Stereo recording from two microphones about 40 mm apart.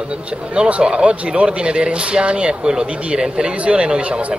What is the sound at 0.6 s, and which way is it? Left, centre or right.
Speech, right.